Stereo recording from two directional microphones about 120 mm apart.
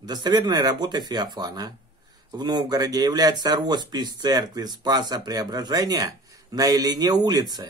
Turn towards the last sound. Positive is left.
turn(degrees=-30)  # may be behind; listen again after turning